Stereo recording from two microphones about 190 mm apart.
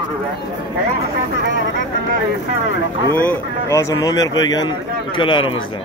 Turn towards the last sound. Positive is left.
turn(degrees=25)  # may be behind; listen again after turning